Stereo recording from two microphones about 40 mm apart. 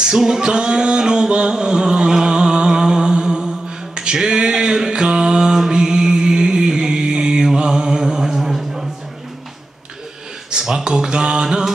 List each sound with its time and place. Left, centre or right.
0.0 s a sound: centre
10.6 s mantra: centre
11.4 s music: centre